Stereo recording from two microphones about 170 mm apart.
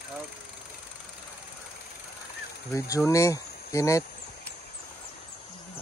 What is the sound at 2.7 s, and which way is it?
Speech, 20° left (ahead or behind).